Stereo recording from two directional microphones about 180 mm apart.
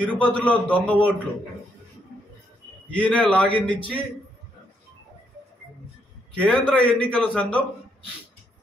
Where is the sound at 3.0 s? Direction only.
5° left (ahead or behind).